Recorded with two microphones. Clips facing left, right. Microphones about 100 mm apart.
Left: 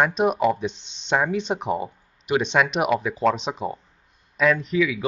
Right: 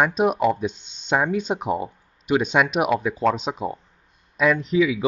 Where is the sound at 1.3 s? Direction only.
10° right (ahead or behind).